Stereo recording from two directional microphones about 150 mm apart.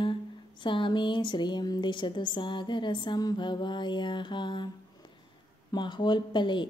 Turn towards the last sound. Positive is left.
turn(degrees=30)  # may be behind; listen again after turning